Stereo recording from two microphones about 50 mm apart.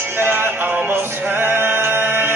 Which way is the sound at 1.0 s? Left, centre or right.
Right.